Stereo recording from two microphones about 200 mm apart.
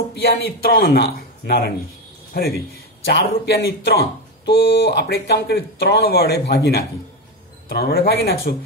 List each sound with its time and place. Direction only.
0.1 s speech: 50° left (ahead or behind)
2.3 s speech: 50° left (ahead or behind)